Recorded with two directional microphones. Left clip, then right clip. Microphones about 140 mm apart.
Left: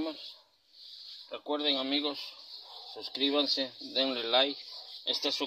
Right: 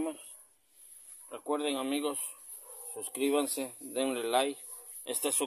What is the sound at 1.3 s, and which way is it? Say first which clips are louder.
Speech: left 2 dB; 15° right (ahead or behind).